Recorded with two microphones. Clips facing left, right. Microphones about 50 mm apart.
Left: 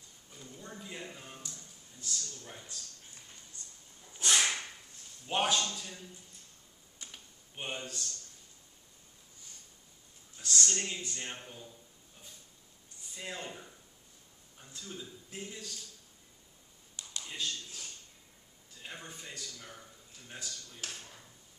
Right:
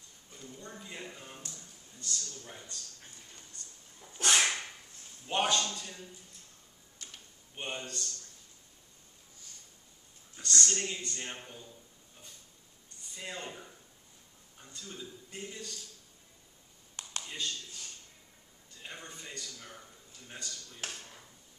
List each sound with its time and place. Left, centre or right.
0.3 s a sound: centre
2.0 s speech: centre
3.6 s a sound: right
4.2 s whip: right
5.2 s speech: centre
7.0 s a sound: centre
10.4 s speech: centre
13.0 s speech: centre
17.2 s tap: centre
18.7 s a man's voice: centre